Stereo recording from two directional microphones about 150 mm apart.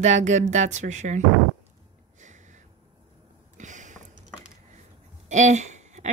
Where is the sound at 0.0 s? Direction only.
50° right (ahead or behind).